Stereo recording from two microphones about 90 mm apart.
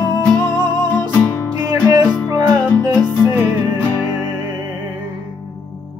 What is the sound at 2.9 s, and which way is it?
Music, 15° left (ahead or behind).